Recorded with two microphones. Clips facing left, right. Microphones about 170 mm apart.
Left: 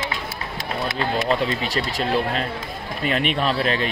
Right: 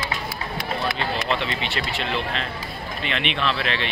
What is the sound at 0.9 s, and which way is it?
Speech, 40° left (ahead or behind).